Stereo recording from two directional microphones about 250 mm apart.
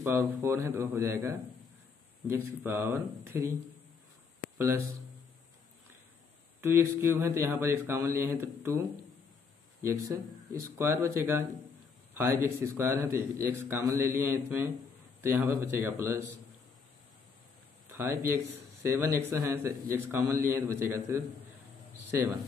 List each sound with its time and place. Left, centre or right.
0.0 s a man's voice: centre
4.6 s speech: centre
6.6 s a man's voice: centre
9.8 s a man's voice: centre
12.4 s a man's voice: centre
17.9 s a man's voice: centre